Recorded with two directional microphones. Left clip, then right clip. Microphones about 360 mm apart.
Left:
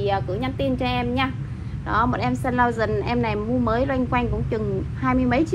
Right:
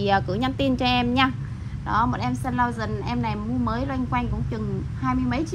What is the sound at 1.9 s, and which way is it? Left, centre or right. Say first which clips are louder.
A woman's voice: left 2 dB; centre.